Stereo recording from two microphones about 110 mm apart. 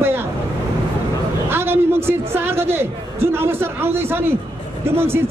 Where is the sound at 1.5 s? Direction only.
20° right (ahead or behind).